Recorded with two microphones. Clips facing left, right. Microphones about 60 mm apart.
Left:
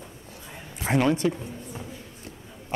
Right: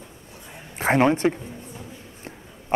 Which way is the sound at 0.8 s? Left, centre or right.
Right.